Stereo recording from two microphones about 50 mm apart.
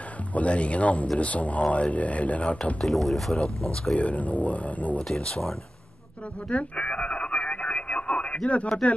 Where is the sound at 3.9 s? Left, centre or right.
Left.